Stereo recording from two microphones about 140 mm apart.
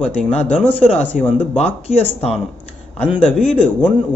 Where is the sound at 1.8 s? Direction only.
45° left (ahead or behind).